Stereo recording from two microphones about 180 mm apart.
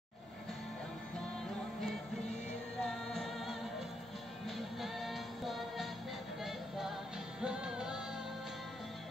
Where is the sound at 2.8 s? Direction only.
Centre (ahead or behind).